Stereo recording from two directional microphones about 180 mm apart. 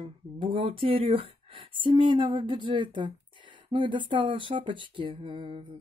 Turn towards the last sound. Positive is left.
turn(degrees=-30)  # may be behind; listen again after turning